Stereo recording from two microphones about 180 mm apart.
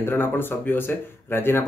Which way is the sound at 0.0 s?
10° left (ahead or behind).